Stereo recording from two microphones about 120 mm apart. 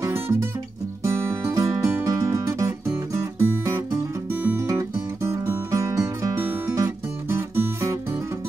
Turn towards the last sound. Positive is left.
turn(degrees=-25)  # may be behind; listen again after turning